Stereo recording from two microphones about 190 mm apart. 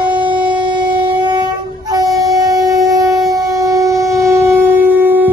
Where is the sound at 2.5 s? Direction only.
Centre (ahead or behind).